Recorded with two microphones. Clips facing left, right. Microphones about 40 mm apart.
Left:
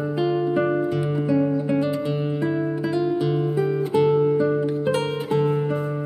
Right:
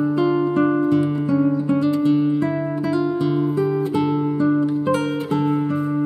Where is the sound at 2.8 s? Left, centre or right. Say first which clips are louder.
Right 4 dB; centre.